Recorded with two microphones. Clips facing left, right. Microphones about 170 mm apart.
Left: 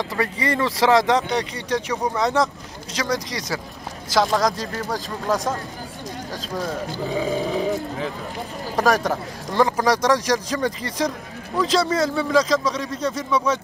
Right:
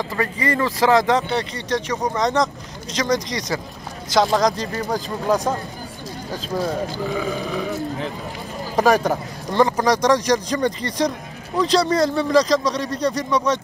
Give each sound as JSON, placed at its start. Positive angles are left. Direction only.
{"t": 0.1, "sound": "speech", "side_deg": 10}
{"t": 7.1, "sound": "speech", "side_deg": 25}
{"t": 8.7, "sound": "speech", "side_deg": 0}